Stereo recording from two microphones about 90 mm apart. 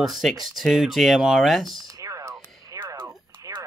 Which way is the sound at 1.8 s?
40° right (ahead or behind).